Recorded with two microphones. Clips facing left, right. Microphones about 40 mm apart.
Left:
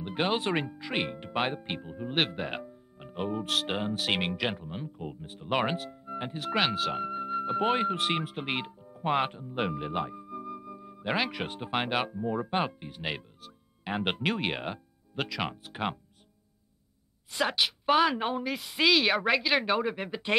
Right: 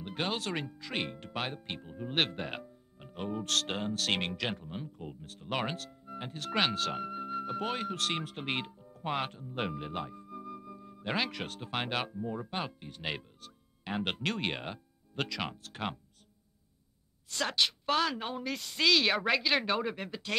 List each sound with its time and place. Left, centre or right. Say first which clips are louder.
0.0 s speech: left 6 dB; centre
12.9 s speech: left 3 dB; centre
17.3 s speech: left 3 dB; centre
20.1 s speech: left 7 dB; left